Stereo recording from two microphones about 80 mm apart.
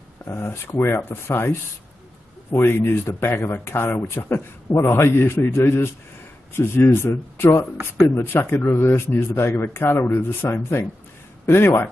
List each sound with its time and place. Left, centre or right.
0.3 s speech: left
2.7 s speech: left